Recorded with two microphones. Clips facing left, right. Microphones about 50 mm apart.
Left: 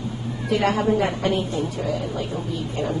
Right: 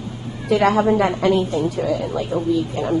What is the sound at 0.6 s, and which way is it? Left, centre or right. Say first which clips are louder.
Speech: right 5 dB; right.